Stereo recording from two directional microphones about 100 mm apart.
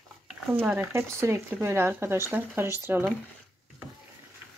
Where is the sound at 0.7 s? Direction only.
25° right (ahead or behind).